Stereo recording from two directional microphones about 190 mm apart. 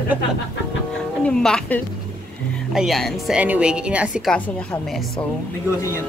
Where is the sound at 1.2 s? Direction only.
5° left (ahead or behind).